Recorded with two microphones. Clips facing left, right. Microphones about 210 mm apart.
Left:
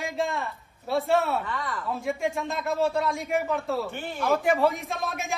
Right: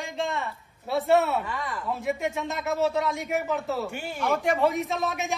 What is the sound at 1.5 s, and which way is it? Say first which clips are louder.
Speech: even; 15° right (ahead or behind).